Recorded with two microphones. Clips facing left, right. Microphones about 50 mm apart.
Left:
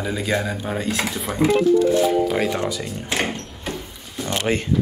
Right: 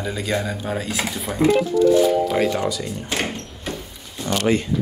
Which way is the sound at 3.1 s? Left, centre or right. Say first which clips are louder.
Left 3 dB; centre.